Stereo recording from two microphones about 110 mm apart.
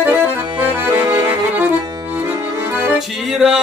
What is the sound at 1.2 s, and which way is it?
Music, 15° right (ahead or behind).